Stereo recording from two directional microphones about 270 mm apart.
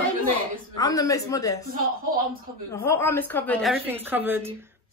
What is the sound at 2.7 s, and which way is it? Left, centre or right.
A woman's voice, centre.